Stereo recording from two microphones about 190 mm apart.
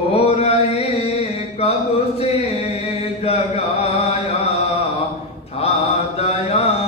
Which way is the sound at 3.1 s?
35° left (ahead or behind).